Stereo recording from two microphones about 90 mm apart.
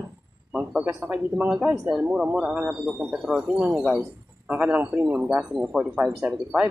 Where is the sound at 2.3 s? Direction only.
15° right (ahead or behind).